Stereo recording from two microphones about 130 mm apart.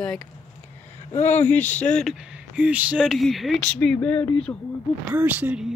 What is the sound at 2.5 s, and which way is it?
Speech, 10° right (ahead or behind).